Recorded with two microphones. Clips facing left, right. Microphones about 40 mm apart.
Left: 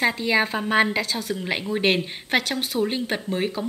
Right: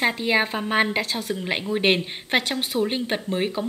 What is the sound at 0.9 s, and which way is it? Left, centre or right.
A woman's voice, centre.